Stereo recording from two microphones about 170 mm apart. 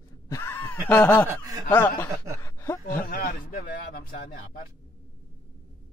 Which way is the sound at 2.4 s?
15° left (ahead or behind).